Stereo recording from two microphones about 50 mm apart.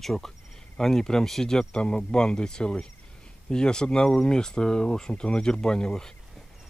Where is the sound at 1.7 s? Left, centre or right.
Centre.